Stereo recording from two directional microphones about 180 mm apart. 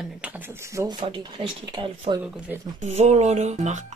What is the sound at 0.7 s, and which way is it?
Speech, 25° right (ahead or behind).